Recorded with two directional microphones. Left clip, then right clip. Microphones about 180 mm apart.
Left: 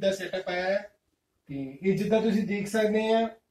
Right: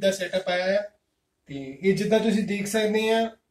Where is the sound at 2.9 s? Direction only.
5° right (ahead or behind).